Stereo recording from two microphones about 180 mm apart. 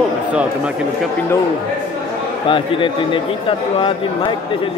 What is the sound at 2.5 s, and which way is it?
A man's voice, 30° left (ahead or behind).